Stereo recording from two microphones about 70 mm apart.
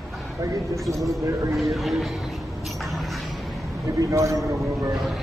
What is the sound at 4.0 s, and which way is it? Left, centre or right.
Speech, right.